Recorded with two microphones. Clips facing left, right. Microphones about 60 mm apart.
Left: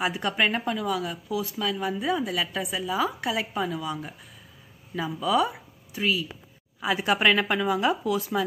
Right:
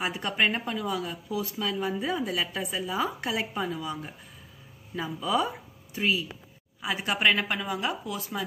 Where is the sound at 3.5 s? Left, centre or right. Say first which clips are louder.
Left 2 dB; centre.